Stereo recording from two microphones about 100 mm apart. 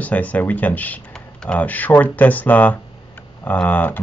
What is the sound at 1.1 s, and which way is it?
Speech, 5° left (ahead or behind).